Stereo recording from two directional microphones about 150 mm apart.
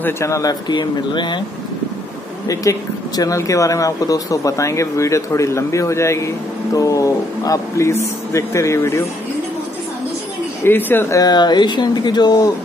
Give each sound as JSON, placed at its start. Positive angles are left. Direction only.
{"t": 0.0, "sound": "speech", "side_deg": 20}
{"t": 2.4, "sound": "speech", "side_deg": 20}
{"t": 10.6, "sound": "speech", "side_deg": 15}